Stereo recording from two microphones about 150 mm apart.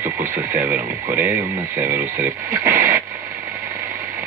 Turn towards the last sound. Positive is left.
turn(degrees=-20)  # may be behind; listen again after turning